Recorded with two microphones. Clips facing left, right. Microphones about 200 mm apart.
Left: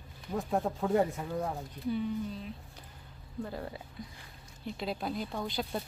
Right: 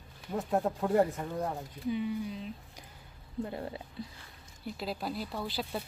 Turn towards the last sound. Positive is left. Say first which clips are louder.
# left 1 dB
turn(degrees=0)  # may be behind; listen again after turning